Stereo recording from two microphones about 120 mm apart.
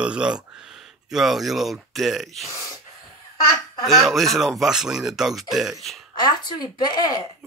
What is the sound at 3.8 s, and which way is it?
Speech, centre (ahead or behind).